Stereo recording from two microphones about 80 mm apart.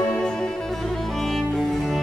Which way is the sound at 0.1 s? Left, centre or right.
Centre.